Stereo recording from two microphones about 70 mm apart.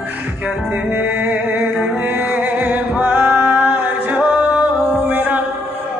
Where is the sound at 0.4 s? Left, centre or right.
Centre.